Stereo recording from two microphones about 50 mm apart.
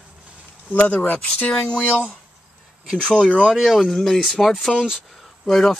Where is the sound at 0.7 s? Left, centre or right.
Left.